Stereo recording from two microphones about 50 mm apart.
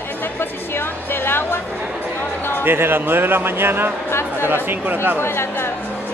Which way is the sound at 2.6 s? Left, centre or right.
Right.